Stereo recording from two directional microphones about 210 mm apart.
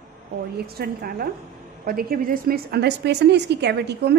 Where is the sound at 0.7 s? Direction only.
45° right (ahead or behind).